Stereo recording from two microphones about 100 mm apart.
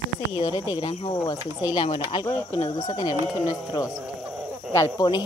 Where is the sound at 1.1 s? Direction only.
35° left (ahead or behind).